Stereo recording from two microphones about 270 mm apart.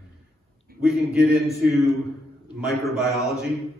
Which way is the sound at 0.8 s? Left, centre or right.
Centre.